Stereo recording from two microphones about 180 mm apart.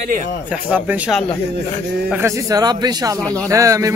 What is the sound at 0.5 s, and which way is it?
Speech, 5° right (ahead or behind).